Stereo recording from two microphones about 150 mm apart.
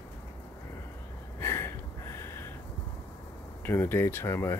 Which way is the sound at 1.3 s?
15° left (ahead or behind).